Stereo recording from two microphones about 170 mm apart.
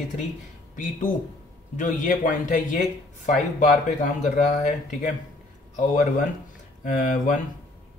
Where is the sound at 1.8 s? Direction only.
50° left (ahead or behind).